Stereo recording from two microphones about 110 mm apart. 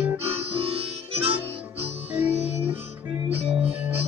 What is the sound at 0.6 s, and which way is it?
Harmonica, 60° right (ahead or behind).